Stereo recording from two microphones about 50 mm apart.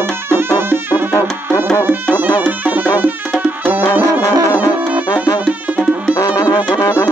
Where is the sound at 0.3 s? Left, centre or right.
Right.